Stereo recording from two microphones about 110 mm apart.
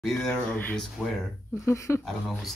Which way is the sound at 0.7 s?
5° left (ahead or behind).